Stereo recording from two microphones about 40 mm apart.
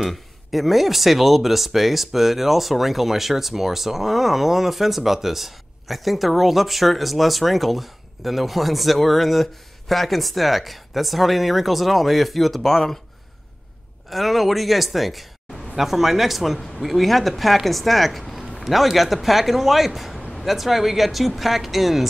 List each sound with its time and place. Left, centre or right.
0.0 s speech: centre
14.1 s speech: centre